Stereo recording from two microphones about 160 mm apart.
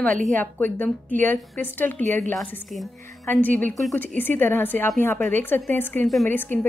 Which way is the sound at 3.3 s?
10° left (ahead or behind).